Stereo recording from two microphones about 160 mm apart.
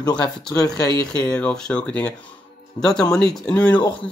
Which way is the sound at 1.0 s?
5° left (ahead or behind).